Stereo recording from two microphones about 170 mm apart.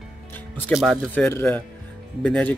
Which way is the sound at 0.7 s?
5° right (ahead or behind).